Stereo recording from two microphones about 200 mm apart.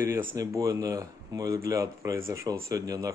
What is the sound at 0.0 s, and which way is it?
Speech, 10° right (ahead or behind).